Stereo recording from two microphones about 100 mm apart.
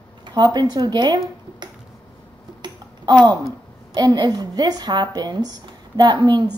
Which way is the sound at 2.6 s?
45° right (ahead or behind).